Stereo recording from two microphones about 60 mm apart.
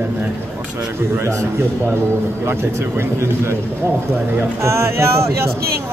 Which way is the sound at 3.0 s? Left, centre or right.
Right.